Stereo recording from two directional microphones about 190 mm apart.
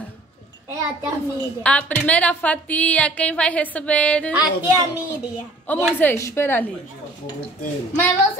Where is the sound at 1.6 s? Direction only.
5° left (ahead or behind).